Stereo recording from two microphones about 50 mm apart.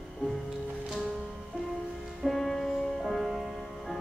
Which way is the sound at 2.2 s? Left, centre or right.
Centre.